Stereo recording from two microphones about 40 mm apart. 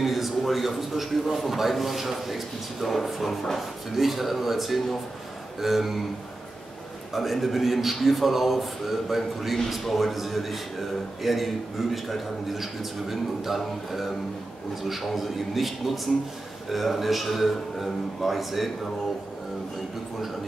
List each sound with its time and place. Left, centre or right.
0.0 s a man's voice: centre
7.2 s a man's voice: centre